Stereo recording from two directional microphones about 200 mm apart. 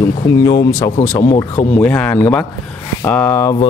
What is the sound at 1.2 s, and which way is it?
Speech, 35° left (ahead or behind).